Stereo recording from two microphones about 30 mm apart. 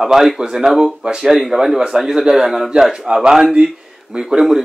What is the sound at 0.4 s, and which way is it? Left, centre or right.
Speech, right.